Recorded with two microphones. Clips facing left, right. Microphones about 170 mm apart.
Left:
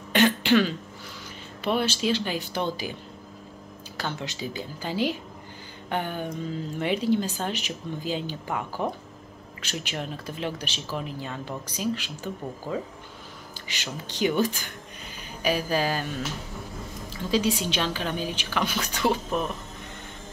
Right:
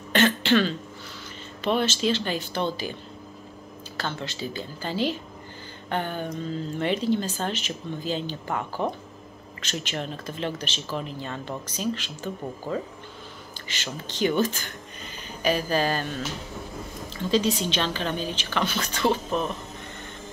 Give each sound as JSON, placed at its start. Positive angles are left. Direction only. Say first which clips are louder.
{"t": 0.1, "sound": "throat clearing", "louder": "left 1 dB", "side_deg": 10}
{"t": 1.6, "sound": "speech", "louder": "right 1 dB", "side_deg": 10}
{"t": 13.7, "sound": "speech", "louder": "right 1 dB", "side_deg": 10}